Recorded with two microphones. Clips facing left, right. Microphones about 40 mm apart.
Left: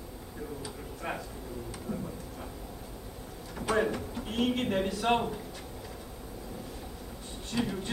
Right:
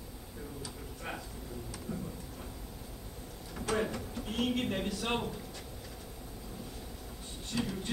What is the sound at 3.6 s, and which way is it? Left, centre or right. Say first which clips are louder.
Speech: left 5 dB; left.